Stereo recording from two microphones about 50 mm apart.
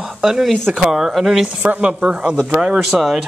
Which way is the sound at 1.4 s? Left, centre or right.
Right.